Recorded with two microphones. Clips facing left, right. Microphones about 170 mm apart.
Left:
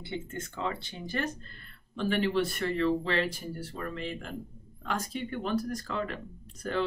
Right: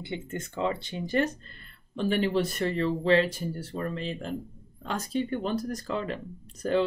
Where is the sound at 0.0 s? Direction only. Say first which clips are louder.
Right 2 dB; 15° right (ahead or behind).